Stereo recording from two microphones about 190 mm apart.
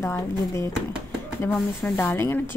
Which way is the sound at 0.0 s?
15° left (ahead or behind).